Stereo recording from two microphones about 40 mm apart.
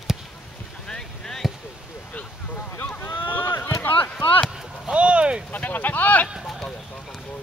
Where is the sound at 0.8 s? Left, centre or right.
Centre.